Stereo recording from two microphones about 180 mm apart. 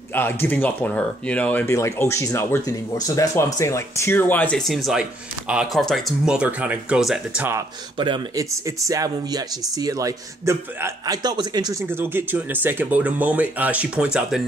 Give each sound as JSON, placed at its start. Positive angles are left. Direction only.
{"t": 0.1, "sound": "speech", "side_deg": 10}
{"t": 8.0, "sound": "speech", "side_deg": -25}